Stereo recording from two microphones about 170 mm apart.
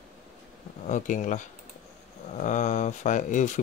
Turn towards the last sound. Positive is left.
turn(degrees=45)  # may be behind; listen again after turning